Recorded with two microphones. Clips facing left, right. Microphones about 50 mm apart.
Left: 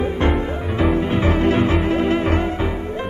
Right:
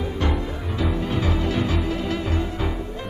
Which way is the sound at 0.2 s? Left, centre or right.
Left.